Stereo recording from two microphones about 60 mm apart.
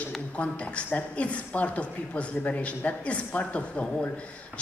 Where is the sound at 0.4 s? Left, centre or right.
Left.